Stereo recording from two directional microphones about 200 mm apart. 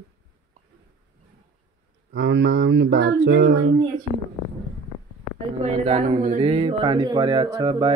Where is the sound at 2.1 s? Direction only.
70° right (ahead or behind).